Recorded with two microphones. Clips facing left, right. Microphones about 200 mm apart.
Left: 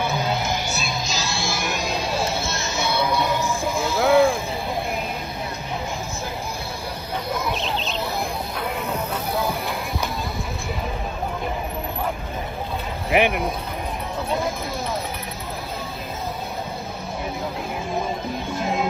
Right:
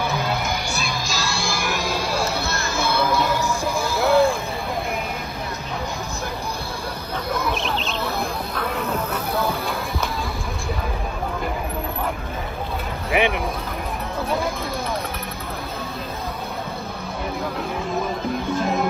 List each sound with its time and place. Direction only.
1.0 s music: centre (ahead or behind)
2.4 s music: 60° right (ahead or behind)
3.3 s music: centre (ahead or behind)
4.0 s a sound: 15° left (ahead or behind)
7.3 s a sound: 20° left (ahead or behind)
8.5 s snake: 20° left (ahead or behind)
9.3 s music: 25° left (ahead or behind)
13.1 s a sound: centre (ahead or behind)
18.5 s music: 15° left (ahead or behind)